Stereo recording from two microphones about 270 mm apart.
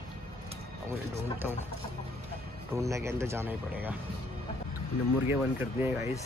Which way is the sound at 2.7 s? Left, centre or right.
Centre.